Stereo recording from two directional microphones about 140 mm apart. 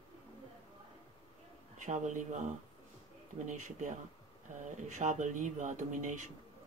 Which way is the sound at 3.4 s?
60° right (ahead or behind).